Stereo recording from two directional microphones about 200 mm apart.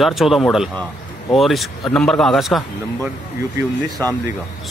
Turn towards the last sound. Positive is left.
turn(degrees=-20)  # may be behind; listen again after turning